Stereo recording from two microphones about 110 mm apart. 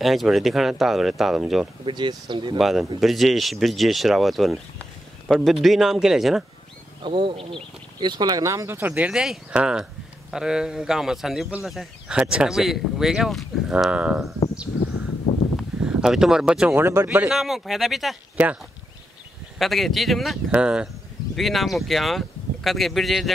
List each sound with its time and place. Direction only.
0.0 s speech: centre (ahead or behind)
1.9 s speech: 45° right (ahead or behind)
2.6 s speech: centre (ahead or behind)
7.0 s speech: 50° right (ahead or behind)
8.0 s speech: 40° right (ahead or behind); by 14.3 s 10° right (ahead or behind)
15.5 s a sound: 5° right (ahead or behind)
16.7 s speech: 20° right (ahead or behind)
17.3 s speech: centre (ahead or behind)
19.6 s speech: centre (ahead or behind)